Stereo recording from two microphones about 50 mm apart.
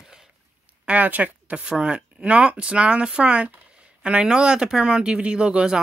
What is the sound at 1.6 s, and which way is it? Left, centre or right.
Speech, centre.